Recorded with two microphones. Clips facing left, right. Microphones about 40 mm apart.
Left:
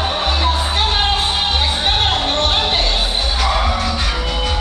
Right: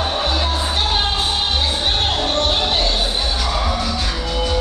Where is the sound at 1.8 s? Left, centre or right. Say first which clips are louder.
Left 2 dB; left.